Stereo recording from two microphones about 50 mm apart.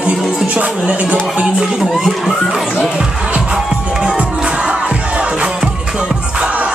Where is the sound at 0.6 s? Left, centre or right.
Right.